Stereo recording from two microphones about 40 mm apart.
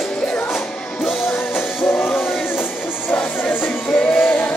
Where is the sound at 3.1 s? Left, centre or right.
Left.